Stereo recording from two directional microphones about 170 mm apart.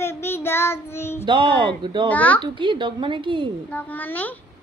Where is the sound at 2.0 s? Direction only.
10° left (ahead or behind).